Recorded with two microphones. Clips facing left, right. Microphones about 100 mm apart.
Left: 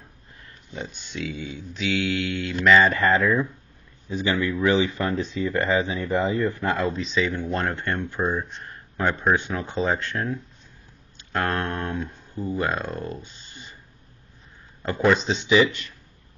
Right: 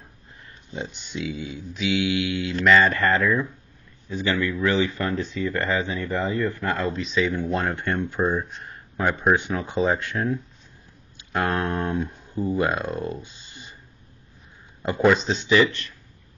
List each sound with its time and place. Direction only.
0.7 s speech: 20° right (ahead or behind); by 3.3 s 5° left (ahead or behind)
4.1 s speech: 15° left (ahead or behind)
6.8 s speech: centre (ahead or behind)
7.7 s speech: 10° right (ahead or behind)
14.8 s speech: 15° right (ahead or behind)
15.0 s speech: centre (ahead or behind)